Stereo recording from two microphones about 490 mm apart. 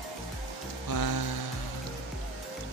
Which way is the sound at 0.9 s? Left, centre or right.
Left.